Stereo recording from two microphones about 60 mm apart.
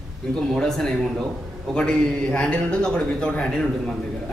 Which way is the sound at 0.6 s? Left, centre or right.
Centre.